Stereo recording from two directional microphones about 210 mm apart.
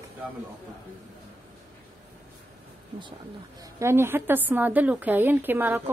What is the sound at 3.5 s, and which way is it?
A woman's voice, 15° right (ahead or behind).